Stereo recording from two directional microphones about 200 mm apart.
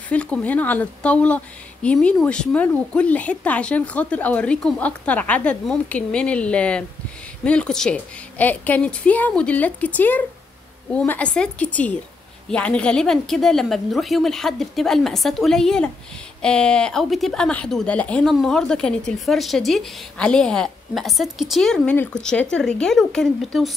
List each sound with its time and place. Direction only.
0.1 s a woman's voice: 5° left (ahead or behind)